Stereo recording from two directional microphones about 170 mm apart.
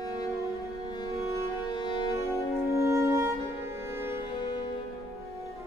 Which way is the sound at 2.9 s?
15° right (ahead or behind).